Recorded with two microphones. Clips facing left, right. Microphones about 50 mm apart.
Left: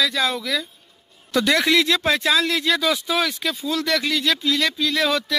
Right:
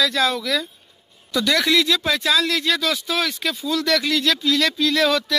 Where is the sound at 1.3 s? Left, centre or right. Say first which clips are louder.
Left 1 dB; left.